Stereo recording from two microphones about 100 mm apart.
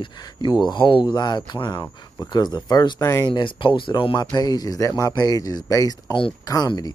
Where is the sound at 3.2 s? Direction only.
50° left (ahead or behind).